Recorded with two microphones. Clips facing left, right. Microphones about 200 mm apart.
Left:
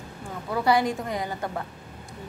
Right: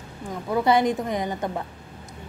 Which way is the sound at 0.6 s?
20° right (ahead or behind).